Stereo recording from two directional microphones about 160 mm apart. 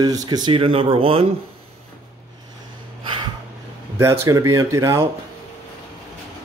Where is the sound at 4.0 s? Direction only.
20° right (ahead or behind).